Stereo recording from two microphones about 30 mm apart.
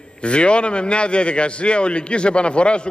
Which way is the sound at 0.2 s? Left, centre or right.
Left.